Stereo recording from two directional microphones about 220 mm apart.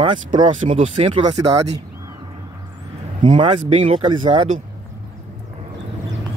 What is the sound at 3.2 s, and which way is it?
Speech, 20° right (ahead or behind).